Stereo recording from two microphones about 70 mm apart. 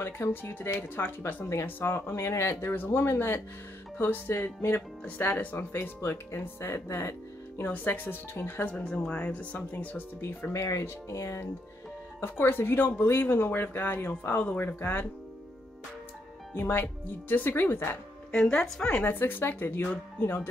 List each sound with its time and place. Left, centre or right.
0.0 s speech: left
7.6 s speech: left
8.7 s speech: centre; by 10.5 s left
10.5 s speech: left
12.2 s speech: left
16.5 s speech: left
18.3 s speech: centre
19.0 s speech: left